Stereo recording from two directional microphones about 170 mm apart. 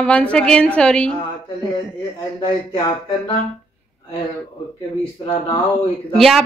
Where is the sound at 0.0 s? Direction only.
5° left (ahead or behind).